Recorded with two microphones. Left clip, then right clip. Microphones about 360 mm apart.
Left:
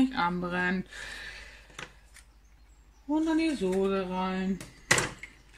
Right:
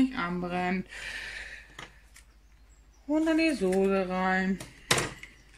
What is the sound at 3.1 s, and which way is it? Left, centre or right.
Speech, right.